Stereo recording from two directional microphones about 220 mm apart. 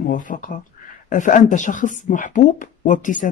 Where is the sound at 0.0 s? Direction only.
35° left (ahead or behind).